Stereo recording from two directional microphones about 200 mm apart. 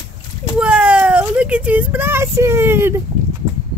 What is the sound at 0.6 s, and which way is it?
Speech, 5° right (ahead or behind).